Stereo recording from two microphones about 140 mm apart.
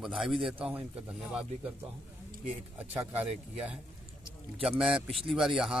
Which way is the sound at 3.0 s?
15° right (ahead or behind).